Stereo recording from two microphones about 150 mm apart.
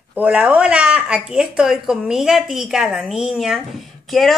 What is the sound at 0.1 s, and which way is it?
Speech, 10° right (ahead or behind).